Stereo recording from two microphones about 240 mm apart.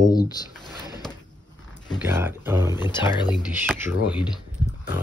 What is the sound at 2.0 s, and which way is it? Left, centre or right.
Speech, centre.